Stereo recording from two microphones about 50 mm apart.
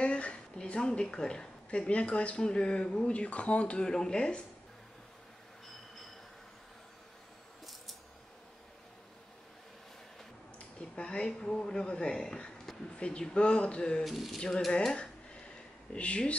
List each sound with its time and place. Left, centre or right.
0.0 s a woman's voice: left
10.8 s speech: centre
12.9 s speech: left
14.0 s a sound: centre
15.9 s speech: left